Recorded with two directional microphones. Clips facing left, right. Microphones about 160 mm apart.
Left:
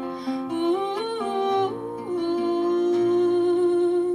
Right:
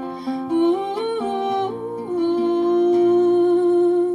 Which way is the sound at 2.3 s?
30° right (ahead or behind).